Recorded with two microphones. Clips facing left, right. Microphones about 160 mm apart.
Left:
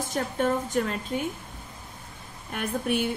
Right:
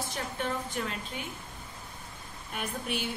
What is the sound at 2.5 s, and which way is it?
Speech, 55° left (ahead or behind).